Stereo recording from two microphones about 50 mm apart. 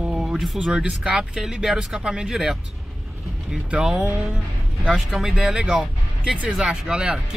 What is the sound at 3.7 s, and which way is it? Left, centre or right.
Speech, centre.